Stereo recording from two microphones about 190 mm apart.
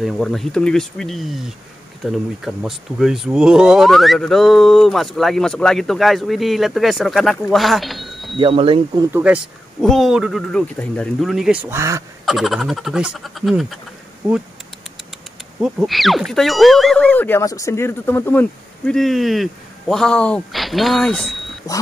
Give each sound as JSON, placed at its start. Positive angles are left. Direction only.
{"t": 0.0, "sound": "speech", "side_deg": 0}
{"t": 8.4, "sound": "speech", "side_deg": -30}
{"t": 9.1, "sound": "speech", "side_deg": -5}
{"t": 11.7, "sound": "speech", "side_deg": -15}
{"t": 12.3, "sound": "speech", "side_deg": 0}
{"t": 15.6, "sound": "speech", "side_deg": 0}